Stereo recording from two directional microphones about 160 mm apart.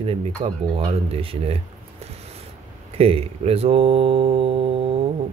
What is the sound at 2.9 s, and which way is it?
Speech, 40° right (ahead or behind).